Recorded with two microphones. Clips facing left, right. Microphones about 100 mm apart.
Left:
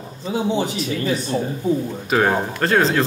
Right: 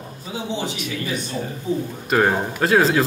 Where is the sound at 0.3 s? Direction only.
40° left (ahead or behind).